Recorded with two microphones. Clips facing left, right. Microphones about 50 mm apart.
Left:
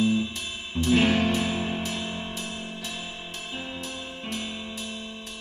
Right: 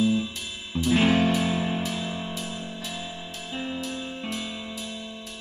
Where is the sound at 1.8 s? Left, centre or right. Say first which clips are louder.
Right 1 dB; left.